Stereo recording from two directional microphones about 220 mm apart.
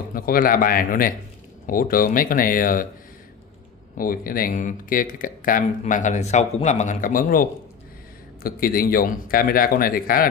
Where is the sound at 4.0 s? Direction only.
40° left (ahead or behind).